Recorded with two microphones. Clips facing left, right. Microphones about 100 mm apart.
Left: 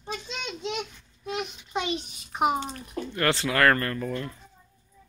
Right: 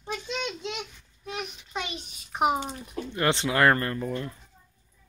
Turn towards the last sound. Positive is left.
turn(degrees=-15)  # may be behind; listen again after turning